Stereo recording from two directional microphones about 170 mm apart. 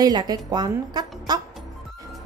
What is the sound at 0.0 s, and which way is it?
A woman's voice, 25° right (ahead or behind).